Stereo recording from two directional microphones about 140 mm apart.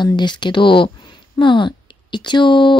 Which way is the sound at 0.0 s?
30° left (ahead or behind).